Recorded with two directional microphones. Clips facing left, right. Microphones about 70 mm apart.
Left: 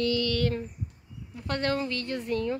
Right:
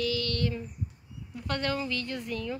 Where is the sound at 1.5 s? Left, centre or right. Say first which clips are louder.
Left 2 dB; left.